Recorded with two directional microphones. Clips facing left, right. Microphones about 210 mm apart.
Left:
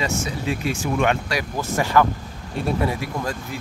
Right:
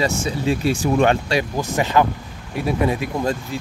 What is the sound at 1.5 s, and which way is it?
Speech, 15° right (ahead or behind).